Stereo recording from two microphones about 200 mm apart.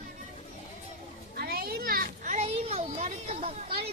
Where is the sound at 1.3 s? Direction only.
50° right (ahead or behind); by 3.7 s 30° right (ahead or behind).